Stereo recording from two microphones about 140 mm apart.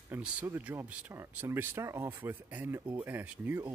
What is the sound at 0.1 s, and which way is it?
Speech, 10° right (ahead or behind).